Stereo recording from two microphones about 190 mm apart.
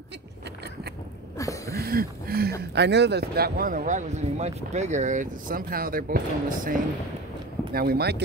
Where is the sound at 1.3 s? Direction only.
15° left (ahead or behind).